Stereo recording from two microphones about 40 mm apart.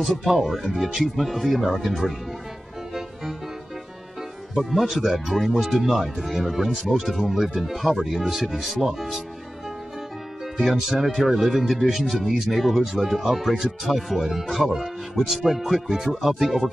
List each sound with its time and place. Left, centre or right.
0.2 s speech: centre
4.6 s speech: centre
10.4 s speech: centre